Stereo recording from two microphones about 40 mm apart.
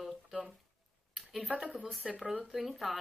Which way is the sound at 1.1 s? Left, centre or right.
Centre.